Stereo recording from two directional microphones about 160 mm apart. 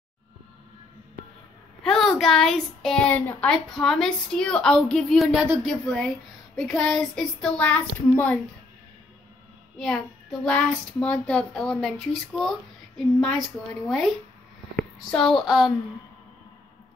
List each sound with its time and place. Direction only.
1.8 s speech: 5° left (ahead or behind)
9.8 s speech: 5° left (ahead or behind)